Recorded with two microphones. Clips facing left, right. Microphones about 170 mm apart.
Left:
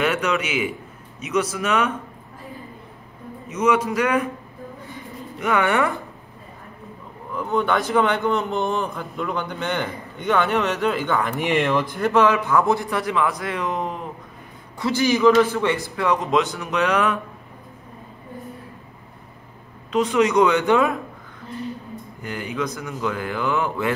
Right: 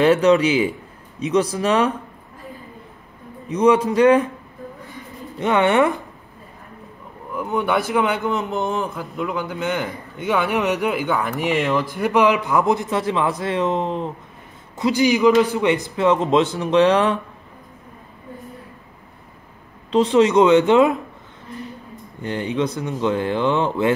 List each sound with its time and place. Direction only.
0.0 s speech: 30° right (ahead or behind)
3.4 s a man's voice: 30° right (ahead or behind)
5.4 s a man's voice: 25° right (ahead or behind)
7.3 s a man's voice: 10° right (ahead or behind); by 14.1 s 25° right (ahead or behind)
14.8 s a man's voice: 15° right (ahead or behind)
19.9 s a man's voice: 30° right (ahead or behind)
22.2 s a man's voice: 30° right (ahead or behind)